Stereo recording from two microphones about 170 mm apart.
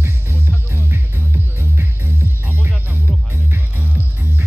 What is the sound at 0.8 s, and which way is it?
Music, 10° right (ahead or behind).